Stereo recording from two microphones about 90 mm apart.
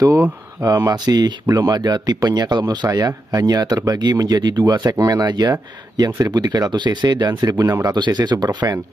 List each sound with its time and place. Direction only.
0.7 s speech: 40° right (ahead or behind)